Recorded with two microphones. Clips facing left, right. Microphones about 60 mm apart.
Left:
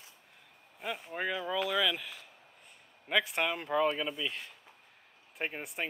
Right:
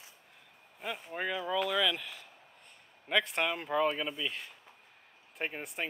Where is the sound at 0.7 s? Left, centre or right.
Centre.